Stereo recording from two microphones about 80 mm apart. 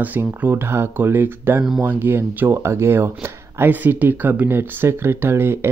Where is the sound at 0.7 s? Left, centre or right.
Right.